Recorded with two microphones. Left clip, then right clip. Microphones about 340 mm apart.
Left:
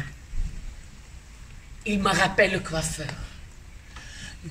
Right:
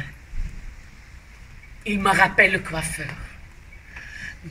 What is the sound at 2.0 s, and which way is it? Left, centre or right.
Speech, centre.